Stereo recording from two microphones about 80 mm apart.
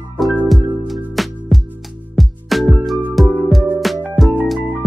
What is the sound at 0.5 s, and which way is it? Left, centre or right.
Music, centre.